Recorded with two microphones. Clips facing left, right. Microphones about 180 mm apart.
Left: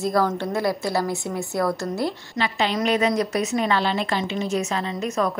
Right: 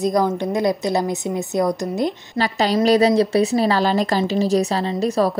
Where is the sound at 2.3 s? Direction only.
40° right (ahead or behind).